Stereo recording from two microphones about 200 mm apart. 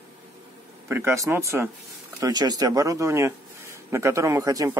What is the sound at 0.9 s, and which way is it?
Speech, 15° right (ahead or behind).